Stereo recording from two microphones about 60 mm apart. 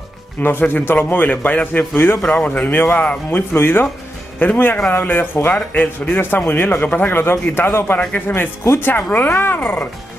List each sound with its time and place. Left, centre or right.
0.4 s a man's voice: left
3.3 s a man's voice: left